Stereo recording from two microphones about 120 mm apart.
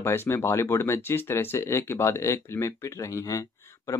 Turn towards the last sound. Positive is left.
turn(degrees=30)  # may be behind; listen again after turning